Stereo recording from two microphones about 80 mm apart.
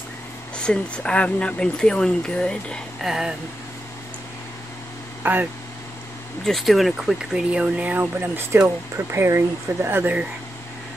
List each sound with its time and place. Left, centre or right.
0.6 s speech: centre
3.0 s a sound: centre
5.2 s speech: right
6.4 s speech: centre; by 10.2 s right